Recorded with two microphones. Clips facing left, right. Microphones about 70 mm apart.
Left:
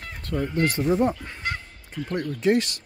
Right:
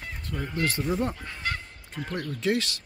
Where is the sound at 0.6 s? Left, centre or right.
Left.